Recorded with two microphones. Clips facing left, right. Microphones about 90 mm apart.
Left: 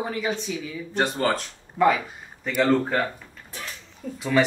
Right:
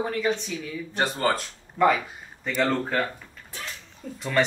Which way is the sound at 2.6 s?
5° left (ahead or behind).